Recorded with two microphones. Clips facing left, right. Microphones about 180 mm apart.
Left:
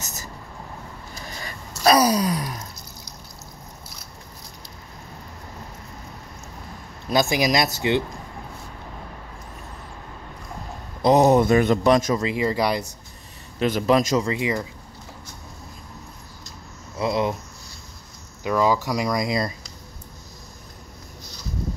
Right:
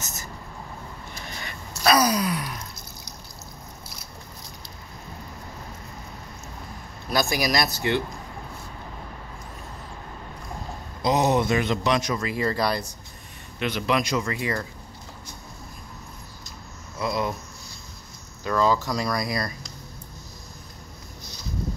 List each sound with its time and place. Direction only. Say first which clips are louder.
1.4 s gasp: left 4 dB; 35° left (ahead or behind)
7.1 s speech: left 4 dB; 20° left (ahead or behind)
11.0 s a man's voice: left 6 dB; 50° left (ahead or behind)
12.2 s speech: left 3 dB; 20° left (ahead or behind)
13.6 s a man's voice: left 6 dB; 40° left (ahead or behind)
14.2 s speech: left 4 dB; 15° left (ahead or behind)
17.0 s speech: left 4 dB; 25° left (ahead or behind)
18.4 s speech: left 2 dB; 15° left (ahead or behind)